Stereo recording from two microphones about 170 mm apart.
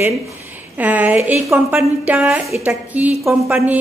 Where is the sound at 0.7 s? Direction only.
10° right (ahead or behind).